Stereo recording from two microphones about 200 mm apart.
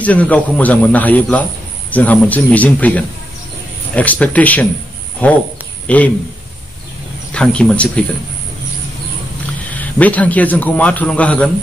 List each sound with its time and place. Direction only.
0.0 s a man's voice: 5° left (ahead or behind)
7.3 s speech: 5° left (ahead or behind)
9.7 s a man's voice: 10° left (ahead or behind)